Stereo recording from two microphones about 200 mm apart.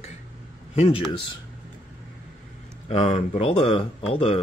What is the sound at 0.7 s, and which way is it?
Speech, 30° left (ahead or behind).